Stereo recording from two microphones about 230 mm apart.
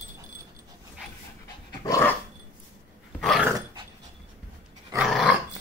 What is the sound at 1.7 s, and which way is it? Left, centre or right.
Dog, centre.